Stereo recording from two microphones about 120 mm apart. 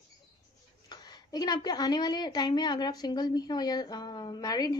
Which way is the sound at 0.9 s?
35° left (ahead or behind).